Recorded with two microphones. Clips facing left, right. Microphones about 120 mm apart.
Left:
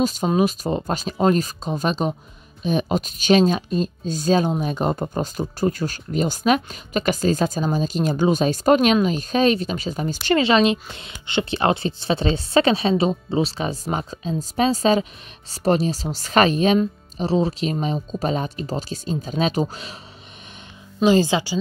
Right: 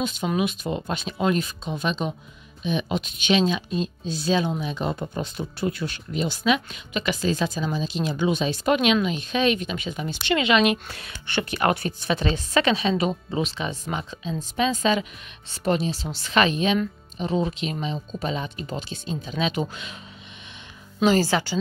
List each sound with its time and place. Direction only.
0.0 s speech: 40° left (ahead or behind)
21.0 s speech: 15° left (ahead or behind)